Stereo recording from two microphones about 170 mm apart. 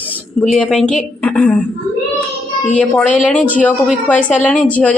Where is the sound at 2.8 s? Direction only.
10° left (ahead or behind).